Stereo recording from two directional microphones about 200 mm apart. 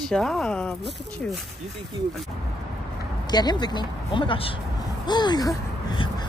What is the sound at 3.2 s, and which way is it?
Vehicle, 20° left (ahead or behind).